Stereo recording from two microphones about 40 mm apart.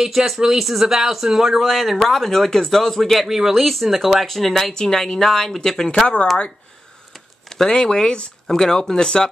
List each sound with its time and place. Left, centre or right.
0.0 s speech: centre
1.6 s speech: centre
3.3 s speech: centre
3.5 s speech: centre
7.4 s a sound: centre
7.7 s speech: centre